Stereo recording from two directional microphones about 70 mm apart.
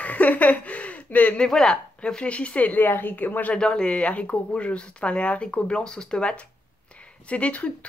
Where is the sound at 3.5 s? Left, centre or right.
Centre.